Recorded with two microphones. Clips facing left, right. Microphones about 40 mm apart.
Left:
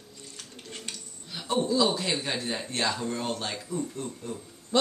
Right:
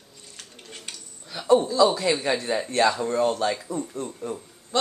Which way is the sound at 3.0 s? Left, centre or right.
Right.